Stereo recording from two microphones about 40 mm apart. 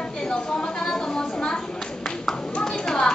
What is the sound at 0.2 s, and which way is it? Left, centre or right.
Chatter, centre.